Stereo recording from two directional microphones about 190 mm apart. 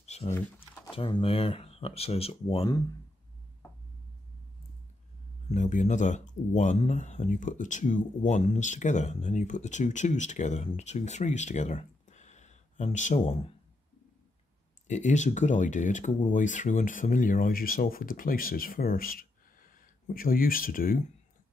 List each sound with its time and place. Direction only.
0.0 s a sound: 35° left (ahead or behind)
0.9 s speech: 25° left (ahead or behind)
5.5 s speech: 40° left (ahead or behind)
14.9 s speech: 40° left (ahead or behind)